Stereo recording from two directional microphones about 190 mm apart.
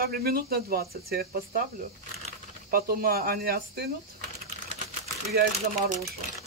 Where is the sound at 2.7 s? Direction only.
50° right (ahead or behind).